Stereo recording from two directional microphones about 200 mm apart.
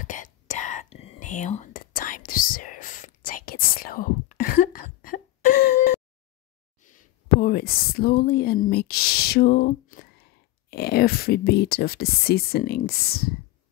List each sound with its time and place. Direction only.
0.0 s whispering: 40° left (ahead or behind)
6.8 s speech: 40° left (ahead or behind)